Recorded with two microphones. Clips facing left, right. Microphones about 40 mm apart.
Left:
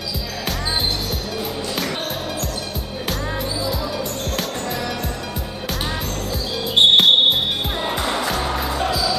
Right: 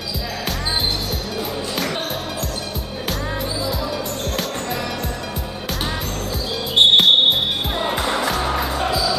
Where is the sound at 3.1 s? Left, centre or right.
Centre.